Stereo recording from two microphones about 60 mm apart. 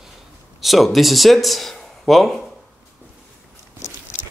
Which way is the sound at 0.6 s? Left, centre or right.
Centre.